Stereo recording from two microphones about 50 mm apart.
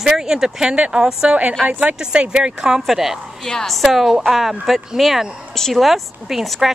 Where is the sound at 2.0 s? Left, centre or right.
Centre.